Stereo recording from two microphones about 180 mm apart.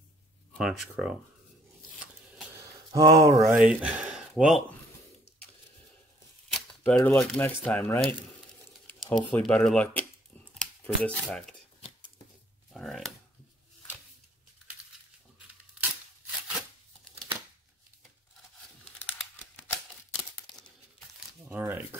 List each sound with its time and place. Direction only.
0.6 s speech: centre (ahead or behind)
2.9 s speech: 20° right (ahead or behind)
3.3 s speech: centre (ahead or behind)
6.5 s speech: 5° left (ahead or behind)
9.3 s speech: 5° left (ahead or behind)
12.7 s a sound: centre (ahead or behind)
21.5 s a sound: 10° right (ahead or behind)